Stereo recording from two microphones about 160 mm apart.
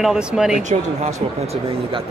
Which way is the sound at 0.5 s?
50° right (ahead or behind).